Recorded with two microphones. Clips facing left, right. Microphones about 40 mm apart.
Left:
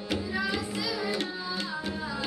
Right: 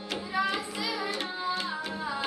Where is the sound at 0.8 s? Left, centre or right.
Right.